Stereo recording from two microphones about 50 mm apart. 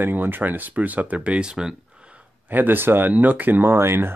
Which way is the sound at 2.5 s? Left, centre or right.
Right.